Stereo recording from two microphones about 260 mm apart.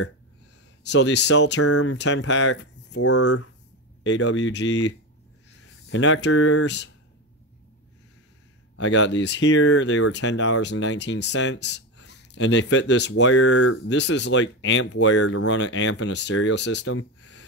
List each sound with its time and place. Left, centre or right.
0.8 s speech: left
1.6 s speech: left
2.0 s speech: left
3.0 s speech: left
4.0 s speech: left
8.7 s speech: left
13.2 s speech: left